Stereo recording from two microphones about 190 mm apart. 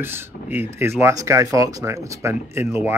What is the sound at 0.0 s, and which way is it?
Speech, 10° right (ahead or behind).